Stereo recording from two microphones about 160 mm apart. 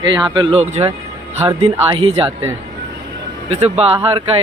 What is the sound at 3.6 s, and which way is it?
Speech, 40° right (ahead or behind).